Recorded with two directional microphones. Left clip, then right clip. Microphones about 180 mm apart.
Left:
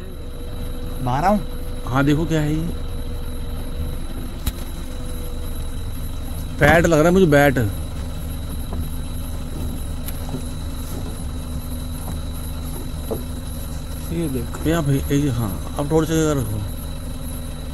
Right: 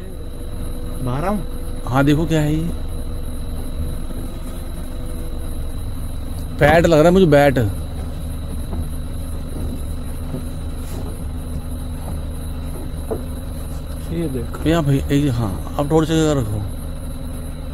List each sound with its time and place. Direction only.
1.0 s speech: 45° left (ahead or behind)
1.9 s speech: 15° right (ahead or behind)
6.6 s speech: 15° right (ahead or behind)
14.1 s insect: 10° left (ahead or behind)
14.6 s speech: 15° right (ahead or behind)